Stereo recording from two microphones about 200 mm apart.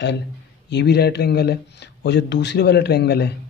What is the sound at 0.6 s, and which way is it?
Speech, 55° left (ahead or behind).